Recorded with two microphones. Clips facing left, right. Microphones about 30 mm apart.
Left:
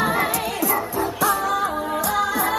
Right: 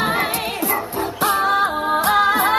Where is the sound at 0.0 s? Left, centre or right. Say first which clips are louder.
Right 1 dB; right.